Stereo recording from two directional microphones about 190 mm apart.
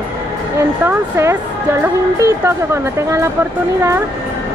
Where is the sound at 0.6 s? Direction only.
15° right (ahead or behind).